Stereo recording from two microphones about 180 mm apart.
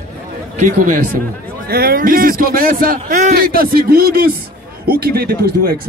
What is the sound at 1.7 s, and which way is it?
Speech, 55° right (ahead or behind).